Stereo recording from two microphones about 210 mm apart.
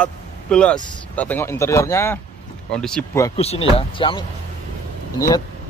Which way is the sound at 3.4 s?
30° left (ahead or behind).